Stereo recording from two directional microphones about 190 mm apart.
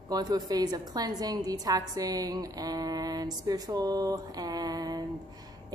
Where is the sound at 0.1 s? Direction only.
20° right (ahead or behind).